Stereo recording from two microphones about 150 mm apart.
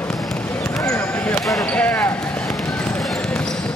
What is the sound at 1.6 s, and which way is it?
Speech, 10° left (ahead or behind).